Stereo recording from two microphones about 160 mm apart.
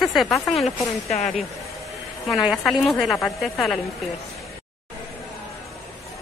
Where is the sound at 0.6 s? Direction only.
45° left (ahead or behind).